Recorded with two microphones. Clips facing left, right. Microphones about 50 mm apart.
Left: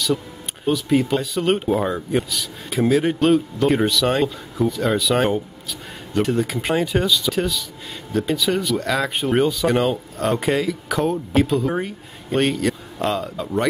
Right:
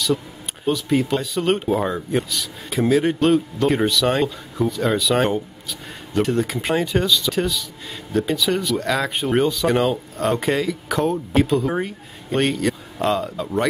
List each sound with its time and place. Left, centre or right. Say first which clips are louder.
0.7 s speech: left 1 dB; centre